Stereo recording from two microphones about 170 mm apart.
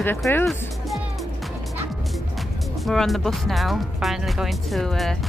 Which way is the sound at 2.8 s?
Centre (ahead or behind).